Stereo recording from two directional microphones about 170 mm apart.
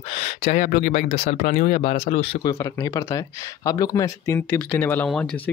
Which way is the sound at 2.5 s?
20° left (ahead or behind).